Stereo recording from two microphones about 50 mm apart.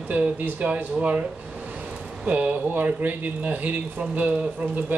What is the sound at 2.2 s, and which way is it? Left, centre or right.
Speech, right.